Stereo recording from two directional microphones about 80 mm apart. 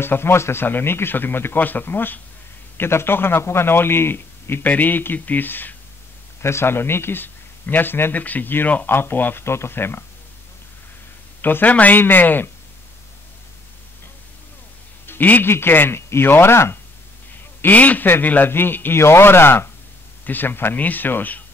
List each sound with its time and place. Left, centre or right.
0.0 s speech: left
11.4 s speech: left
15.0 s speech: left
17.6 s speech: left